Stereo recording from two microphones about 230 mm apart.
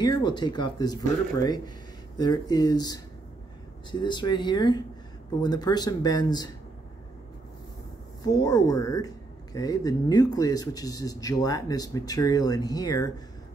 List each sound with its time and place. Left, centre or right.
0.0 s speech: centre
2.1 s speech: centre
4.0 s speech: centre
8.2 s speech: centre